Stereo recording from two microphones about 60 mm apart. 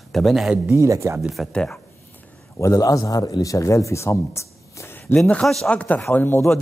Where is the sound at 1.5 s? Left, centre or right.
Centre.